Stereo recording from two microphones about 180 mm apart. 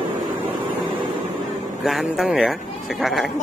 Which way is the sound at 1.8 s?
5° right (ahead or behind).